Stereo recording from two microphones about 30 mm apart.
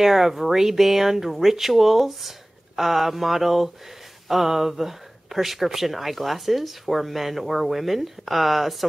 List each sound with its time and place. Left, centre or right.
0.0 s speech: centre